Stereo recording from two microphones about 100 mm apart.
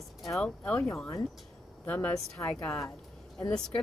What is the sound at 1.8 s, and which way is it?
A woman's voice, 15° left (ahead or behind).